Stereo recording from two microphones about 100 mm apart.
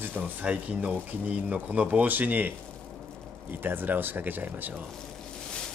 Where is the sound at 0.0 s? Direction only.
15° right (ahead or behind).